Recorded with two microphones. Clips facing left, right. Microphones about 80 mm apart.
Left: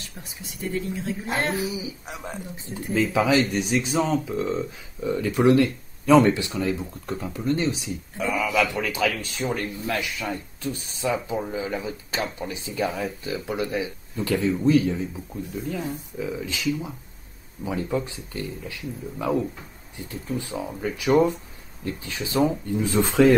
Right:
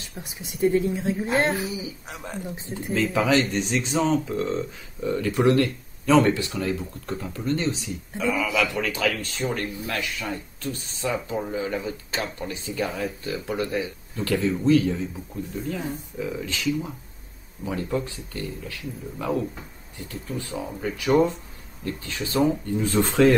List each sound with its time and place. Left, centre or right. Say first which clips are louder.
0.2 s speech: right 11 dB; centre
2.0 s speech: right 1 dB; centre
10.3 s speech: left 1 dB; centre
11.0 s speech: left 1 dB; centre
14.1 s speech: even; centre
15.5 s speech: even; centre
20.5 s speech: right 2 dB; centre
21.8 s speech: even; centre
22.4 s speech: even; centre